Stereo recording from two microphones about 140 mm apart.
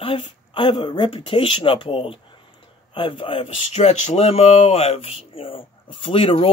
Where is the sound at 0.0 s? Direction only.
40° left (ahead or behind).